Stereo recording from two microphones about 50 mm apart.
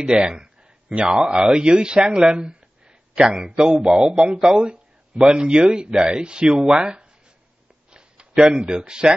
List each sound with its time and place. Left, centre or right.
0.0 s speech: centre
2.0 s a sound: centre
3.4 s speech: centre